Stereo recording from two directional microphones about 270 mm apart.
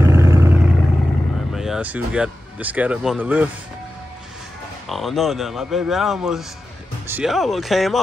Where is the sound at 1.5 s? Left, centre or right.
Centre.